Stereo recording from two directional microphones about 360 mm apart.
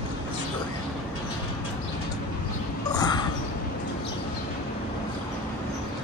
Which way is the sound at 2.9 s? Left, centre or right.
Centre.